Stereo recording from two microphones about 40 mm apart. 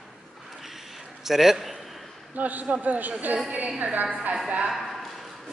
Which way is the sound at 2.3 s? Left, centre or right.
Right.